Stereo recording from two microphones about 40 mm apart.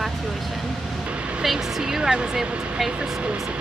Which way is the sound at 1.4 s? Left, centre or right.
Centre.